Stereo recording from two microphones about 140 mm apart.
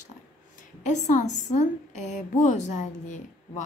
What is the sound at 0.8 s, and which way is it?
A woman's voice, 60° left (ahead or behind).